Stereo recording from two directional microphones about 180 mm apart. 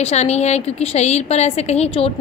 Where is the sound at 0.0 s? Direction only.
40° left (ahead or behind).